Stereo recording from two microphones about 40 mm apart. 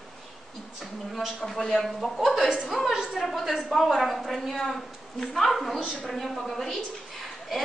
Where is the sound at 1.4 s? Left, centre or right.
Centre.